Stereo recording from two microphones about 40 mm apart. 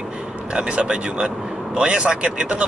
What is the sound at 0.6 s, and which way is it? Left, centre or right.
Speech, right.